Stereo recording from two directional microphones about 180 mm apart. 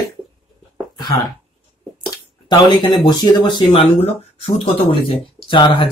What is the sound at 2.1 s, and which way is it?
Speech, 25° left (ahead or behind).